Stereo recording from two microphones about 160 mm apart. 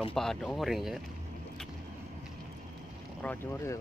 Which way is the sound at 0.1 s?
5° left (ahead or behind).